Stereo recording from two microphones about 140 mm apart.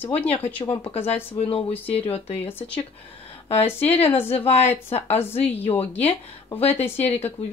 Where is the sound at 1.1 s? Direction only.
15° left (ahead or behind).